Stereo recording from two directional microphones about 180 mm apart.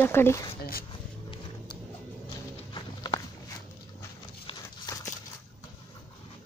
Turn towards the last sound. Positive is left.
turn(degrees=20)  # may be behind; listen again after turning